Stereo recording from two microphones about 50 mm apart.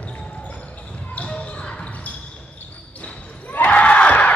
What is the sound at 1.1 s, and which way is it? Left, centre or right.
Basketball bounce, left.